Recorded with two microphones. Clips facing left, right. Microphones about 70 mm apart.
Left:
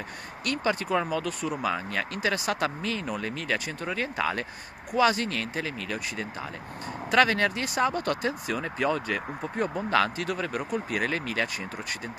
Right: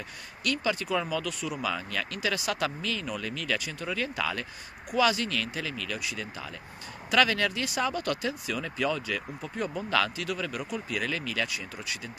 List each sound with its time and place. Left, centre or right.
0.5 s speech: left